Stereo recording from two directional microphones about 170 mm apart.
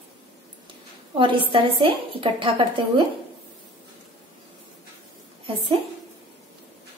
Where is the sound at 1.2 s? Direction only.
30° right (ahead or behind).